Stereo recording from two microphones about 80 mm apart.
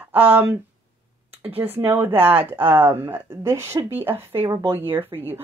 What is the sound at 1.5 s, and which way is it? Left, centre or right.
Speech, right.